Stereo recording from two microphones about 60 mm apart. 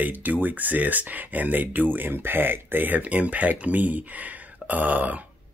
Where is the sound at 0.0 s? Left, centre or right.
Right.